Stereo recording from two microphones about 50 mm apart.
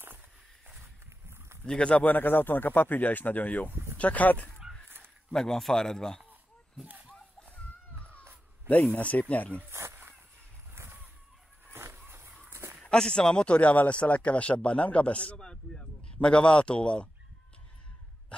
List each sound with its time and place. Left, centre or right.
1.6 s speech: centre
2.0 s speech: left
4.8 s a sound: right
5.3 s a man's voice: centre
8.6 s speech: left
9.7 s a sound: right
12.9 s speech: centre